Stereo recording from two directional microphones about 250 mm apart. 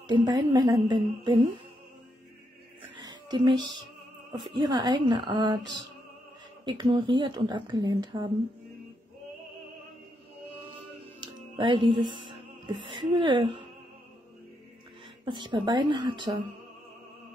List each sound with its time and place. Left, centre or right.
0.0 s speech: centre
2.8 s a sound: centre
4.4 s speech: centre
6.6 s speech: centre
11.1 s speech: centre
15.2 s speech: centre